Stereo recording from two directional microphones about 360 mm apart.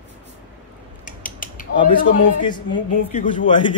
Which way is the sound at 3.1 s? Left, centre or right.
Centre.